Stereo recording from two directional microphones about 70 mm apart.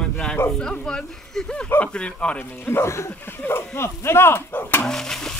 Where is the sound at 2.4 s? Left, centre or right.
Left.